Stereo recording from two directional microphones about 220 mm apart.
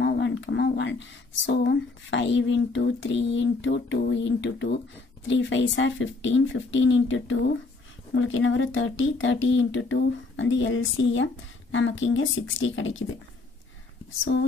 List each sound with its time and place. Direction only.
0.0 s speech: 55° left (ahead or behind)